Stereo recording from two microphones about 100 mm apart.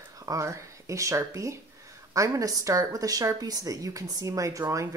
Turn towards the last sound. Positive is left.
turn(degrees=-30)  # may be behind; listen again after turning